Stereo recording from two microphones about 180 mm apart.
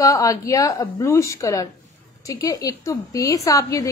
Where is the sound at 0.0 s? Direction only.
15° left (ahead or behind).